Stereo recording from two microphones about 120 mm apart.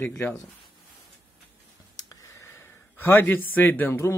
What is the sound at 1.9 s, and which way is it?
Speech, 30° left (ahead or behind).